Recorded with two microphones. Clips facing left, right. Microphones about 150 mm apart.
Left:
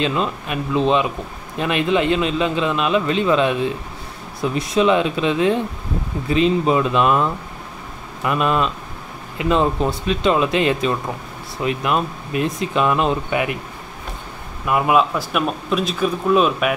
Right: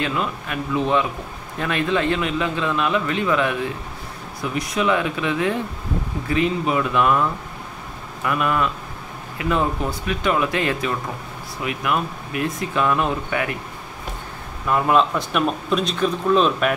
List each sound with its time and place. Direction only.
0.0 s a man's voice: 25° left (ahead or behind)
14.7 s speech: 10° left (ahead or behind)